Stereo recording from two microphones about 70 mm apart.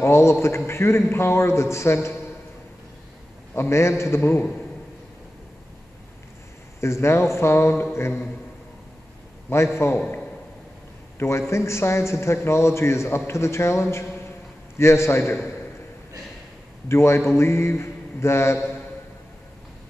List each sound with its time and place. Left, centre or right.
0.0 s speech: left
3.5 s speech: left
6.8 s speech: left
9.5 s speech: left
11.1 s speech: left
16.9 s speech: left